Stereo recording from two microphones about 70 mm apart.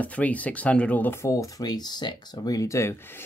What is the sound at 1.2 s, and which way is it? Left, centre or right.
Speech, left.